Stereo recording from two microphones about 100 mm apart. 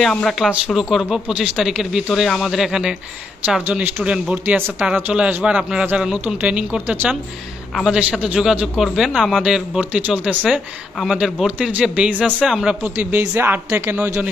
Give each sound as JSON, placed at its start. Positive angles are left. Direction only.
{"t": 0.0, "sound": "speech", "side_deg": 5}
{"t": 3.6, "sound": "a man's voice", "side_deg": -15}
{"t": 8.0, "sound": "a man's voice", "side_deg": -10}
{"t": 12.9, "sound": "a man's voice", "side_deg": -20}